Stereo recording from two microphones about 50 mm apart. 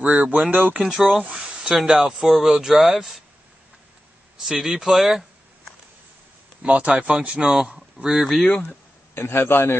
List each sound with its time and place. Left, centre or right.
0.0 s speech: right
0.8 s speech: centre
4.4 s speech: centre
6.6 s speech: right
8.2 s speech: centre
8.6 s speech: left